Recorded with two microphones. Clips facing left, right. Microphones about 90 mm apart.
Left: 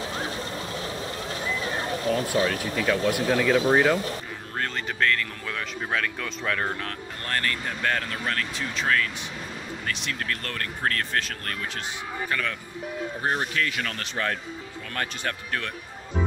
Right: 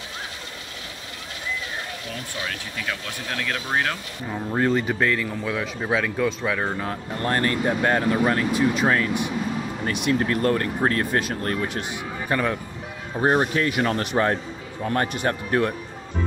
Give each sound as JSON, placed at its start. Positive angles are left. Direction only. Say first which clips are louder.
{"t": 3.1, "sound": "speech", "louder": "left 8 dB", "side_deg": 10}
{"t": 4.5, "sound": "speech", "louder": "right 9 dB", "side_deg": -10}
{"t": 7.2, "sound": "speech", "louder": "right 7 dB", "side_deg": -25}
{"t": 8.8, "sound": "speech", "louder": "right 5 dB", "side_deg": -25}